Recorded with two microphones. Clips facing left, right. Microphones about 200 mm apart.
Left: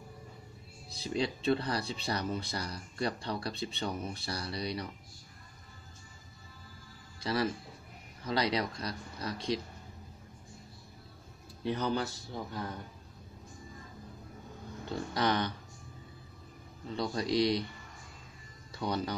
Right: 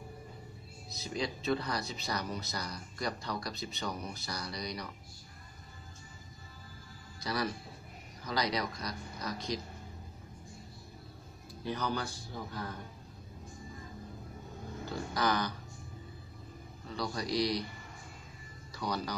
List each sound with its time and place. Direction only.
0.8 s speech: 30° left (ahead or behind)
7.2 s speech: 30° left (ahead or behind)
11.6 s speech: 25° left (ahead or behind)
15.1 s speech: 25° left (ahead or behind)
16.9 s speech: 25° left (ahead or behind)
18.8 s speech: 25° left (ahead or behind)